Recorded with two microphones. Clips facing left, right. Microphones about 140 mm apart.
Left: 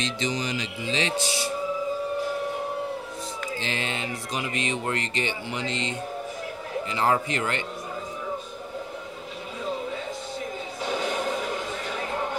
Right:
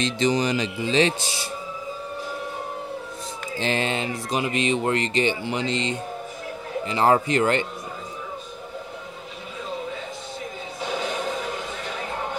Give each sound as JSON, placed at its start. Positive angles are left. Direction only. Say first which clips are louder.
{"t": 0.0, "sound": "a man's voice", "louder": "right 7 dB", "side_deg": -45}
{"t": 3.6, "sound": "speech", "louder": "right 9 dB", "side_deg": -40}